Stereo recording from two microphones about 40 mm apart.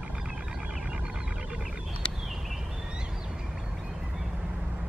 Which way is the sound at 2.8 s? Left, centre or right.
Right.